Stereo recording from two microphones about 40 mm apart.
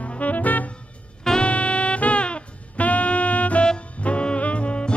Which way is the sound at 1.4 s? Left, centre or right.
Left.